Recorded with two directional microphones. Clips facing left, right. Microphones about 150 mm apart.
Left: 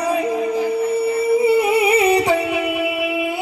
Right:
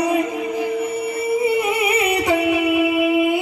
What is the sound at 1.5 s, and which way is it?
Music, 30° left (ahead or behind).